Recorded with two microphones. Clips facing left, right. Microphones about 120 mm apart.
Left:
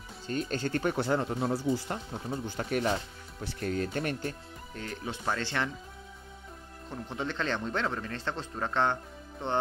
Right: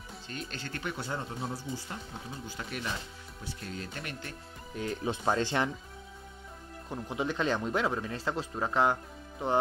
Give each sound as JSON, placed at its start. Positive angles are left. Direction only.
{"t": 0.3, "sound": "speech", "side_deg": 45}
{"t": 0.9, "sound": "speech", "side_deg": 65}
{"t": 4.7, "sound": "speech", "side_deg": -20}
{"t": 6.9, "sound": "speech", "side_deg": -10}